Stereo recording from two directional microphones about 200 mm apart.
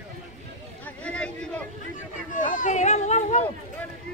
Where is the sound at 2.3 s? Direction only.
40° left (ahead or behind).